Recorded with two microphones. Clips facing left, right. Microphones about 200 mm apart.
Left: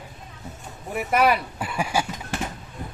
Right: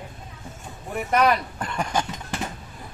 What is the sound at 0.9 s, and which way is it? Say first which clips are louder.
Speech: even; 5° left (ahead or behind).